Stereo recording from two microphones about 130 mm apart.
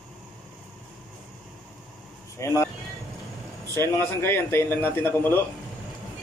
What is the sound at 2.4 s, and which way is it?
Speech, 20° left (ahead or behind).